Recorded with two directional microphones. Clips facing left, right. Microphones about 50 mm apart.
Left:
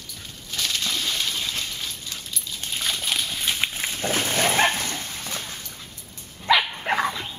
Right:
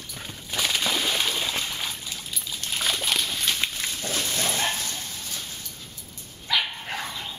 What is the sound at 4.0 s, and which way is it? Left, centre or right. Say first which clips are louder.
Dog: left 7 dB; left.